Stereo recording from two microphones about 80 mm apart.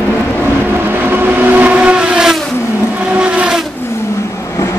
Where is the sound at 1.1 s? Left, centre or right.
Right.